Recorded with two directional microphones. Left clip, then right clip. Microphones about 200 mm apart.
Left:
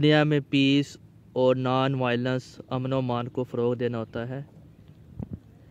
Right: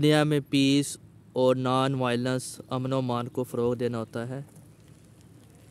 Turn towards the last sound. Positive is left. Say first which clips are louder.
# left 1 dB
turn(degrees=-10)  # may be behind; listen again after turning